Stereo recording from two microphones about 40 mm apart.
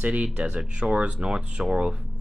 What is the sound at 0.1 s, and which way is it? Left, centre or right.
Speech, right.